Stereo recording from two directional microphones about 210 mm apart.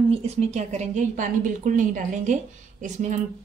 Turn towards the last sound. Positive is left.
turn(degrees=-35)  # may be behind; listen again after turning